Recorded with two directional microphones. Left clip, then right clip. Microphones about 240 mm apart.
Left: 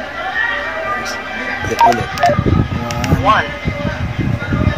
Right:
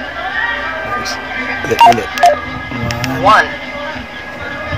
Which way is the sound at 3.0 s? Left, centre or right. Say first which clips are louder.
Right 4 dB; centre.